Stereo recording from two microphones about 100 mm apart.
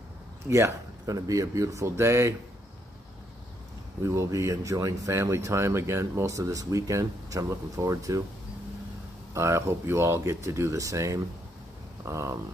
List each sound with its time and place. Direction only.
0.5 s speech: 30° right (ahead or behind)
4.0 s speech: 30° right (ahead or behind)
9.3 s speech: 30° right (ahead or behind)